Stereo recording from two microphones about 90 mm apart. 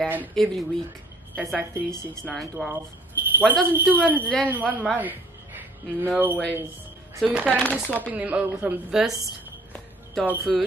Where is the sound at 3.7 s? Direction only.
15° right (ahead or behind).